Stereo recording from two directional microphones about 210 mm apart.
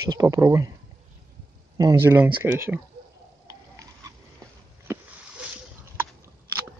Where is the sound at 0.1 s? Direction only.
15° right (ahead or behind).